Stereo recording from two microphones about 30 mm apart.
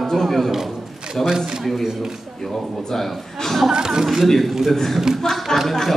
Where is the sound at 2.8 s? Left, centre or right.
Centre.